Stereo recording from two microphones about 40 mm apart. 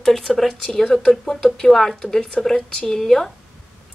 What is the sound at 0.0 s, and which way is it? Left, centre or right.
A woman's voice, centre.